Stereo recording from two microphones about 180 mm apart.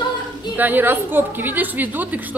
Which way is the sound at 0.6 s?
10° right (ahead or behind).